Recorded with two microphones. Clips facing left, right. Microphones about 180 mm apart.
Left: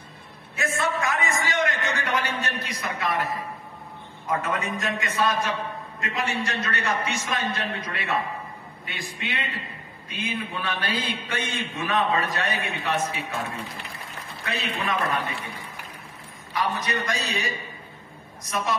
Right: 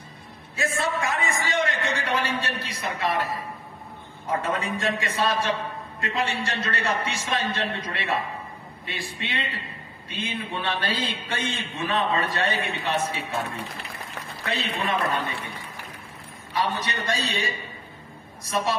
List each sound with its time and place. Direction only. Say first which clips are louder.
0.6 s a sound: even; 30° right (ahead or behind)
4.3 s a man's voice: even; 30° right (ahead or behind)
16.6 s a man's voice: left 3 dB; 30° right (ahead or behind)